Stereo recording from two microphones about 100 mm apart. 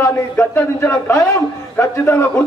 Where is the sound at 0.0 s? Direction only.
20° left (ahead or behind).